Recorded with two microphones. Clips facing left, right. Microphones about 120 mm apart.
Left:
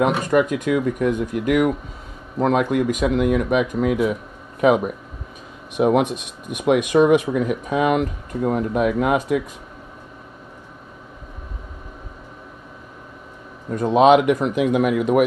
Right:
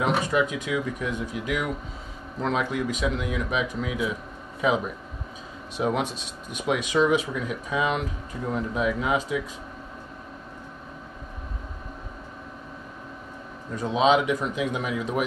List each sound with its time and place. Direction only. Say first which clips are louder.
0.0 s speech: left 6 dB; 55° left (ahead or behind)
13.7 s speech: left 7 dB; 55° left (ahead or behind)